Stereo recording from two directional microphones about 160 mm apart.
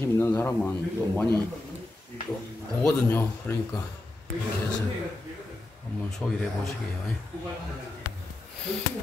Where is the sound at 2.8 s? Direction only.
10° left (ahead or behind).